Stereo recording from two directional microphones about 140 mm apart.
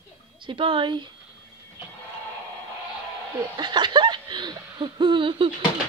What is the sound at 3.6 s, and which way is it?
Speech, 35° right (ahead or behind).